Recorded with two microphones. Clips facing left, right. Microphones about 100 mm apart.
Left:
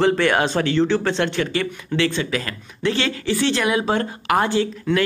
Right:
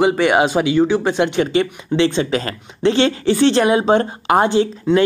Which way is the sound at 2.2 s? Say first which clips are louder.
Right 5 dB; 35° right (ahead or behind).